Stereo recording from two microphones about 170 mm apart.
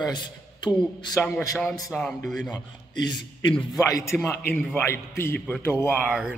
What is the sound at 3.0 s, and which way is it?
A man's voice, 25° left (ahead or behind).